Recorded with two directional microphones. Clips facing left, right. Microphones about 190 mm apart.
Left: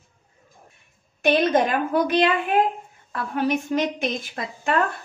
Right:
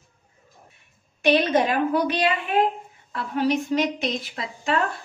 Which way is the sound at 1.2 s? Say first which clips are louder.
Left 1 dB; 50° left (ahead or behind).